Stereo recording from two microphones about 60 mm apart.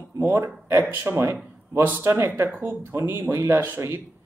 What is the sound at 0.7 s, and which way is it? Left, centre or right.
A man's voice, right.